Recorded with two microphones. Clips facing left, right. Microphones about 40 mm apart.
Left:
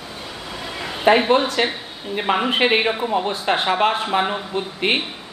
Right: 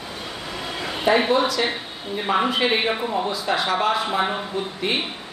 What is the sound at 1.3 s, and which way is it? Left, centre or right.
Speech, left.